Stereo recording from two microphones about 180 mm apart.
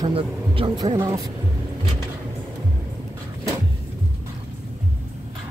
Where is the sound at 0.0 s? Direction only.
30° right (ahead or behind).